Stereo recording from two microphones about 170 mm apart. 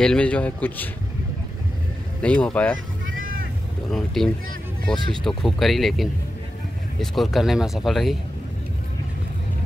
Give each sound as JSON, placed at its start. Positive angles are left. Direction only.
{"t": 0.0, "sound": "a man's voice", "side_deg": 5}
{"t": 2.2, "sound": "a man's voice", "side_deg": 5}
{"t": 3.9, "sound": "speech", "side_deg": 0}